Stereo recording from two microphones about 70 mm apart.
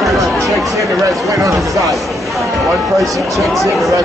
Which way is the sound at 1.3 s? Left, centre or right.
Right.